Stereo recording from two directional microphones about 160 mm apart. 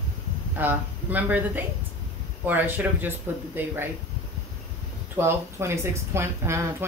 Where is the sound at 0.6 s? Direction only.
10° right (ahead or behind).